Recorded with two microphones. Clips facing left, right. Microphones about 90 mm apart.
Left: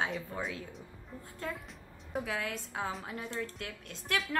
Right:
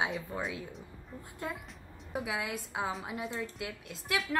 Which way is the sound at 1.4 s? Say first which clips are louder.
Even; 15° right (ahead or behind).